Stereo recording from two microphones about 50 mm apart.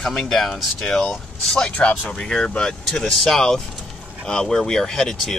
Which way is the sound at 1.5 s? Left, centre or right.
Left.